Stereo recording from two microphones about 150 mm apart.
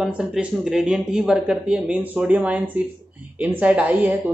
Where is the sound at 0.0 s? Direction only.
Centre (ahead or behind).